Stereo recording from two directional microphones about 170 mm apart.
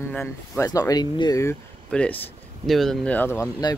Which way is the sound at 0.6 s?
20° left (ahead or behind).